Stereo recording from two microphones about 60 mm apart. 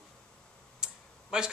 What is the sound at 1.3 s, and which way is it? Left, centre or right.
Speech, centre.